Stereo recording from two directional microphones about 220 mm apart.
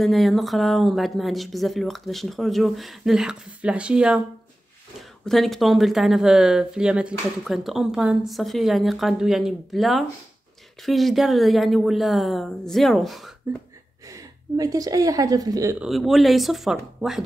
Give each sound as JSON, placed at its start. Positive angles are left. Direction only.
{"t": 0.0, "sound": "speech", "side_deg": 0}
{"t": 5.2, "sound": "speech", "side_deg": 0}
{"t": 14.0, "sound": "speech", "side_deg": -15}
{"t": 15.8, "sound": "speech", "side_deg": 0}